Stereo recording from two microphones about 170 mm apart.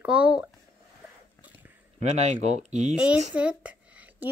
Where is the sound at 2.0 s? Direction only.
40° right (ahead or behind).